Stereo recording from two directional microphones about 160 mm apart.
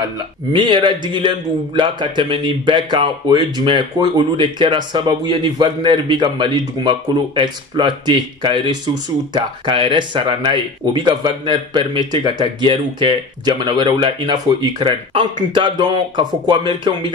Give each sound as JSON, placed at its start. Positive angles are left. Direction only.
{"t": 0.0, "sound": "a man's voice", "side_deg": -30}